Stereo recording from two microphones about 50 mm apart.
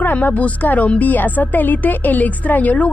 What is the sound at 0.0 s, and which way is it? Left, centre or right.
Speech, left.